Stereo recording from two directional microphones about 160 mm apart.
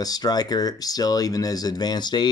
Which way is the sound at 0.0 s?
25° left (ahead or behind).